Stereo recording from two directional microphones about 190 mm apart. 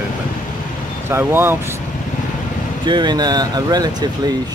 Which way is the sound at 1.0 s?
15° right (ahead or behind).